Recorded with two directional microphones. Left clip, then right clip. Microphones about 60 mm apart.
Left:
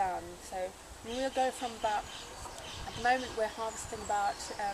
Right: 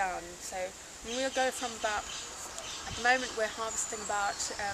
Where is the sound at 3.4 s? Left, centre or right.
Centre.